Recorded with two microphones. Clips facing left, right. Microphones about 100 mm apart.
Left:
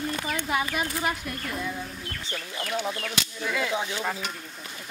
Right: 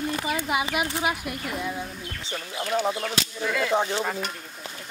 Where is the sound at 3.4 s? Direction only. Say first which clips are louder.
Right 2 dB; centre (ahead or behind).